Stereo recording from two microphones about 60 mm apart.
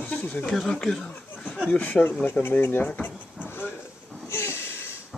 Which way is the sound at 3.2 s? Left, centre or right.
Left.